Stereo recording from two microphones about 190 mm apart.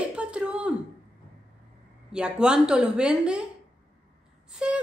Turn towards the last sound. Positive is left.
turn(degrees=-5)  # may be behind; listen again after turning